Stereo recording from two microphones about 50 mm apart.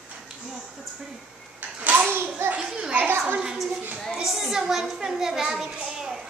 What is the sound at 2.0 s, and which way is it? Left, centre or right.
A child's voice, right.